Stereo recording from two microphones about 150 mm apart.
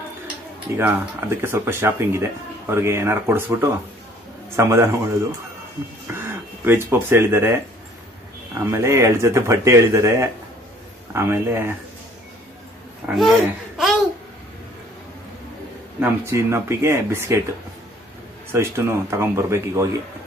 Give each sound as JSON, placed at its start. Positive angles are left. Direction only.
{"t": 0.7, "sound": "speech", "side_deg": -15}
{"t": 6.1, "sound": "speech", "side_deg": -15}
{"t": 13.1, "sound": "speech", "side_deg": 0}
{"t": 16.0, "sound": "speech", "side_deg": -20}
{"t": 18.5, "sound": "speech", "side_deg": -20}